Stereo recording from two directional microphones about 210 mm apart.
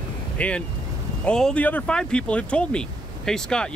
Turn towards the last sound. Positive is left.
turn(degrees=5)  # may be behind; listen again after turning